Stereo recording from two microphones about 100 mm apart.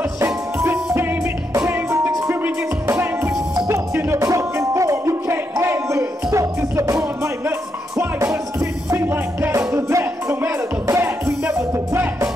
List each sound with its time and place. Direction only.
0.2 s music: 25° right (ahead or behind)
8.5 s music: 25° right (ahead or behind)